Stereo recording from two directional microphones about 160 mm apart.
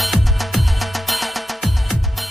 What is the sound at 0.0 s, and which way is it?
Music, centre (ahead or behind).